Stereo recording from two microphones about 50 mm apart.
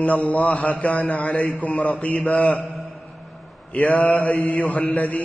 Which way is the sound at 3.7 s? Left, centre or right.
Left.